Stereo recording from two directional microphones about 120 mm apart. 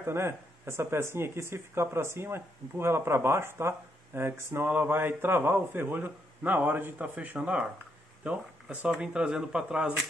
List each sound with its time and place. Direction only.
0.0 s speech: 20° right (ahead or behind)